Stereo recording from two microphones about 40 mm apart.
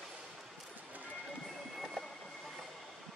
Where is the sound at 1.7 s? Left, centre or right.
Centre.